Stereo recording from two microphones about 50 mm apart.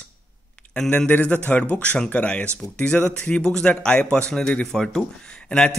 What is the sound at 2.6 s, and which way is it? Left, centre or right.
A man's voice, centre.